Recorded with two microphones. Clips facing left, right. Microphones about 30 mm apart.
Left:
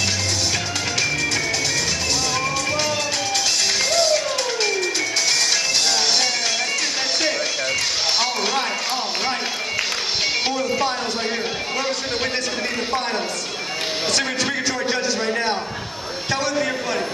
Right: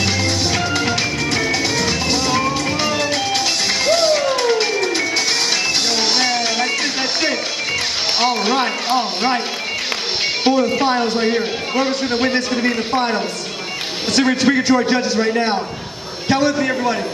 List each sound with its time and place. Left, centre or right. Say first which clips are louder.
0.7 s music: right 3 dB; centre
8.2 s a sound: right 5 dB; centre
10.4 s speech: right 6 dB; centre